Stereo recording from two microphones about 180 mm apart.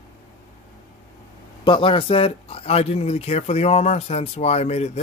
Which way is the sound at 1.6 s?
30° left (ahead or behind).